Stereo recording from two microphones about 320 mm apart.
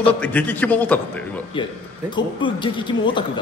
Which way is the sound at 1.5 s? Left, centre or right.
Centre.